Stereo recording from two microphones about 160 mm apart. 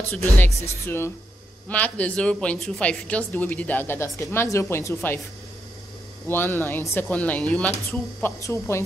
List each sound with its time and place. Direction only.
0.4 s speech: 15° left (ahead or behind)
6.2 s speech: 15° left (ahead or behind)
8.4 s speech: 20° left (ahead or behind)